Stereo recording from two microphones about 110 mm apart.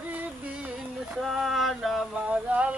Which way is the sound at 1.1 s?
Centre (ahead or behind).